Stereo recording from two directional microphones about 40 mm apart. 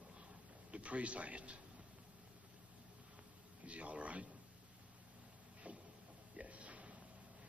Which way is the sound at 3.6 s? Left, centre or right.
Right.